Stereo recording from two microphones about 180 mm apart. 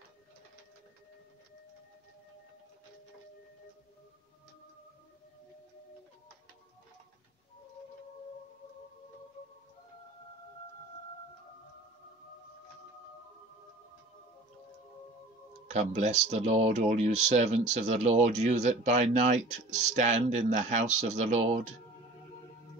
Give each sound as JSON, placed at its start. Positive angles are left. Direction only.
{"t": 15.7, "sound": "speech", "side_deg": -40}